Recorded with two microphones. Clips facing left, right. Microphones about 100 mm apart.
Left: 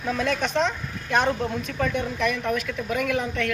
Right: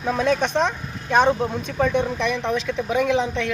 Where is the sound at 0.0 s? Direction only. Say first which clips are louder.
Right 4 dB; 20° right (ahead or behind).